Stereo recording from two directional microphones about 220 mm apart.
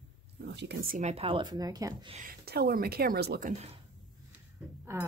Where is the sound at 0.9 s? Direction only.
30° right (ahead or behind).